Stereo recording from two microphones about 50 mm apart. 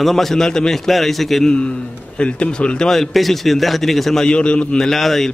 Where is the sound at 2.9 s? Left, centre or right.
Centre.